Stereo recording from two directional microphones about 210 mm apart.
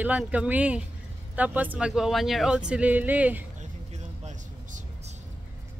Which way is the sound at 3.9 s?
35° right (ahead or behind).